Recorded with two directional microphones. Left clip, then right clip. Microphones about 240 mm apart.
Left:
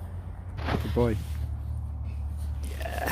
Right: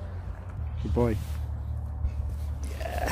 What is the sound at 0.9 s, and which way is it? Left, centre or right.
Speech, centre.